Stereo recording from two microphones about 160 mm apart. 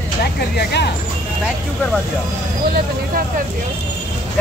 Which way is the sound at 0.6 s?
90° left.